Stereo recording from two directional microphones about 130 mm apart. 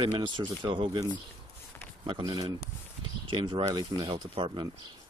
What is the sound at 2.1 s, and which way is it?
Speech, 30° right (ahead or behind).